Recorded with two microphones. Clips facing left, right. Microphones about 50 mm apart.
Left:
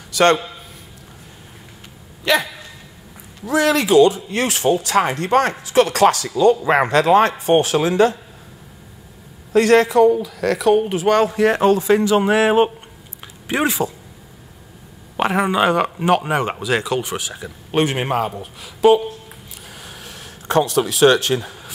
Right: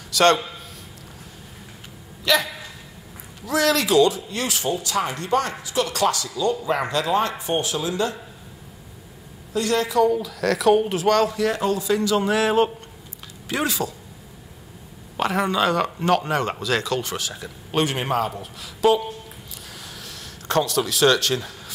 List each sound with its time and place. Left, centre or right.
0.1 s a man's voice: centre
2.3 s speech: left
3.4 s speech: left
4.3 s speech: left
9.5 s speech: left
10.0 s speech: centre
11.2 s a man's voice: left
15.1 s speech: left
19.6 s a sound: left